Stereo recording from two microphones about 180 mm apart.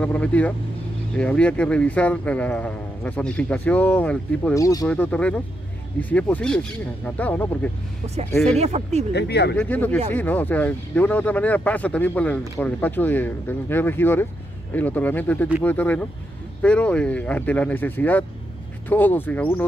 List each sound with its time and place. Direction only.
0.0 s speech: 10° left (ahead or behind)
4.6 s speech: 20° left (ahead or behind)
4.8 s speech: 10° left (ahead or behind)
8.5 s speech: 35° right (ahead or behind)
9.1 s speech: 70° left (ahead or behind)
9.6 s speech: 10° left (ahead or behind)